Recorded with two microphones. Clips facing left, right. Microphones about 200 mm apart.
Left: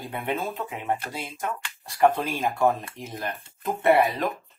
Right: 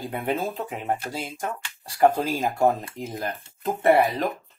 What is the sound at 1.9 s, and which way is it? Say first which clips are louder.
Speech: right 2 dB; 25° right (ahead or behind).